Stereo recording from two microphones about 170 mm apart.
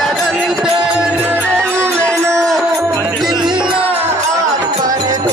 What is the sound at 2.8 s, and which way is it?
Music, 15° right (ahead or behind).